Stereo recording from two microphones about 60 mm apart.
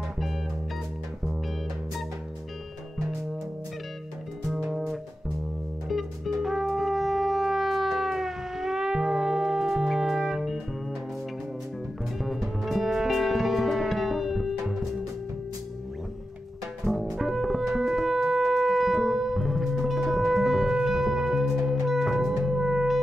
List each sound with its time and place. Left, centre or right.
4.5 s music: centre
12.2 s music: centre
16.8 s music: centre